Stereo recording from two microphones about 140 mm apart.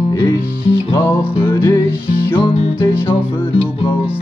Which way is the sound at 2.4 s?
40° left (ahead or behind).